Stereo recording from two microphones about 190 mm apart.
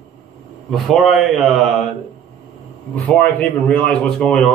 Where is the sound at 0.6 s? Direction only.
Centre (ahead or behind).